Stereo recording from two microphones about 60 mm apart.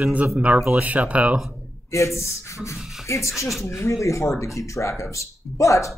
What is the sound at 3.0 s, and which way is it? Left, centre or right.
Speech, left.